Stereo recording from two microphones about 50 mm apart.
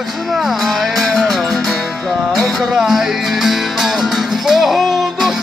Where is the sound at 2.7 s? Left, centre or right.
Centre.